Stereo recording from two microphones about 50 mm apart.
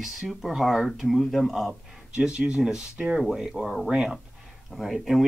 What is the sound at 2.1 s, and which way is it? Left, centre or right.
Speech, centre.